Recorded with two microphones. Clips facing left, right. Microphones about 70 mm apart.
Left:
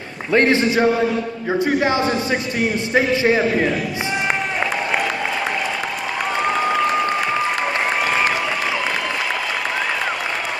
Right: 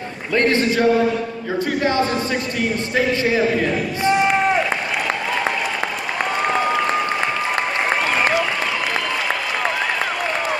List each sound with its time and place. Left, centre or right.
0.3 s a man's voice: left